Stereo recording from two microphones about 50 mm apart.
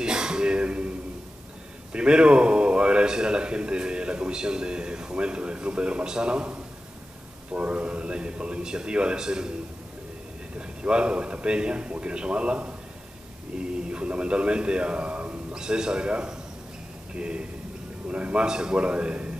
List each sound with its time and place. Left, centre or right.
0.0 s a sound: centre
1.9 s a man's voice: right
10.8 s a man's voice: right
15.5 s a man's voice: centre